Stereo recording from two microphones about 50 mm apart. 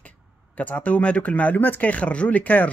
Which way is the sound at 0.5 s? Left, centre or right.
Left.